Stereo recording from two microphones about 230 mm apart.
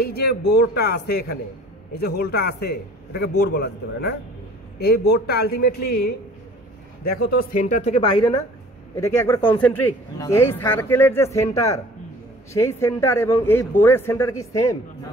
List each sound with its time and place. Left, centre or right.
0.0 s a man's voice: left
7.2 s a woman's voice: left; by 14.8 s centre